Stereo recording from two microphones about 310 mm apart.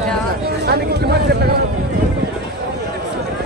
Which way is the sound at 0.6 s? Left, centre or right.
Right.